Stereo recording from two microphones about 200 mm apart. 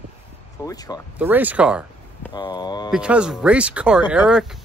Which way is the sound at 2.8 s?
5° right (ahead or behind).